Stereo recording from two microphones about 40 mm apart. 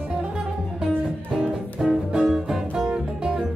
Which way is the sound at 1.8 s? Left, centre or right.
Centre.